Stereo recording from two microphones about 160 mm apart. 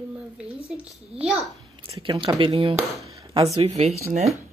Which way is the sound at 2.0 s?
30° right (ahead or behind).